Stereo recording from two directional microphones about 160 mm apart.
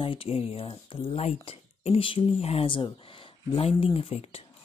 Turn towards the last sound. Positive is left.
turn(degrees=40)  # may be behind; listen again after turning